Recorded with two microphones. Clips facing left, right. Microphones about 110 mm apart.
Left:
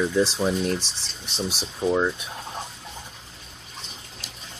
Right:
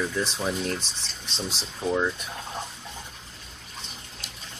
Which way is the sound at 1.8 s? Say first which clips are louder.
Left 3 dB; 15° left (ahead or behind).